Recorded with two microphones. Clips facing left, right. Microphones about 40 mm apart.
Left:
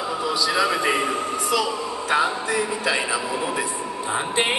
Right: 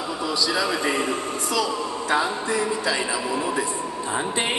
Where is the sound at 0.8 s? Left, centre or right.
Left.